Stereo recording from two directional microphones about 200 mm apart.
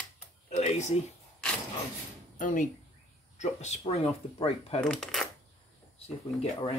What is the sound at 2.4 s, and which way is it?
Speech, 40° left (ahead or behind).